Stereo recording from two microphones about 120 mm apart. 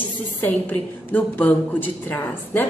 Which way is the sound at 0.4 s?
15° left (ahead or behind).